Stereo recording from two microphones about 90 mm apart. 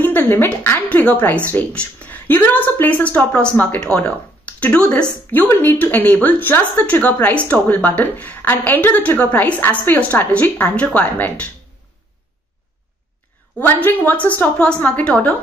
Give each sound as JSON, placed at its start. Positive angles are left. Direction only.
{"t": 0.0, "sound": "a woman's voice", "side_deg": 20}
{"t": 13.6, "sound": "a woman's voice", "side_deg": 20}